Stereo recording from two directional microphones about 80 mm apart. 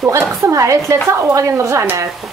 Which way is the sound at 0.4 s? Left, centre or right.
Right.